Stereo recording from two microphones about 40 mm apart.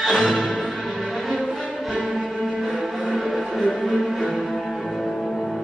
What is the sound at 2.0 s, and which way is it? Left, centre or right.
Music, centre.